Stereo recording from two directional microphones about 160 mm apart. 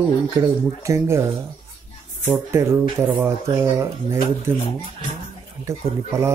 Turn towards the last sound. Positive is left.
turn(degrees=-20)  # may be behind; listen again after turning